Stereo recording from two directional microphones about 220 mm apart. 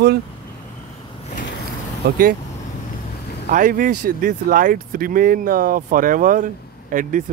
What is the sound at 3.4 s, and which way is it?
Speech, 35° right (ahead or behind).